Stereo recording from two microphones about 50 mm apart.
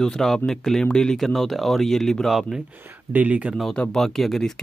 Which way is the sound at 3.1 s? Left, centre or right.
Right.